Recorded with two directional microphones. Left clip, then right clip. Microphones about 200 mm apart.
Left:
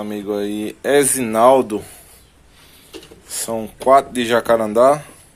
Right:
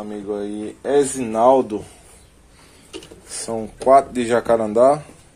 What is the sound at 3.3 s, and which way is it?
Speech, centre (ahead or behind).